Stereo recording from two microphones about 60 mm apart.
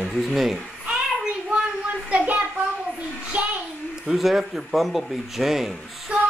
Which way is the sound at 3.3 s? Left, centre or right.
Right.